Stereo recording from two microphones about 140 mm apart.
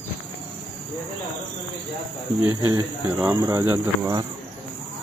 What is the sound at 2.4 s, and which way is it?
Speech, 20° right (ahead or behind).